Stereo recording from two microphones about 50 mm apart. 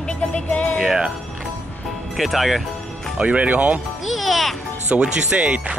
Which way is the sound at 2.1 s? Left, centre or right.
Centre.